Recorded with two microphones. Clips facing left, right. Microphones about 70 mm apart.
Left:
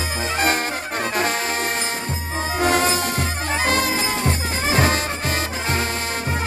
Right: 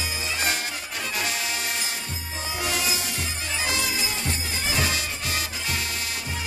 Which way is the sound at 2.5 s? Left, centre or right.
Left.